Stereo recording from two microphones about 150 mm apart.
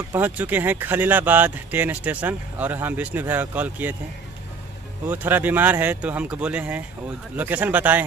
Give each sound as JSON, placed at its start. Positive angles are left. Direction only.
{"t": 0.1, "sound": "speech", "side_deg": -10}
{"t": 5.0, "sound": "speech", "side_deg": -15}